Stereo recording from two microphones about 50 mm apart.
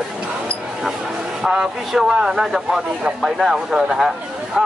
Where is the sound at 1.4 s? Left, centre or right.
Centre.